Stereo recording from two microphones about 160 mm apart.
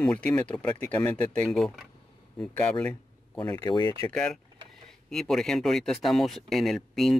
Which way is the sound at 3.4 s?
25° left (ahead or behind).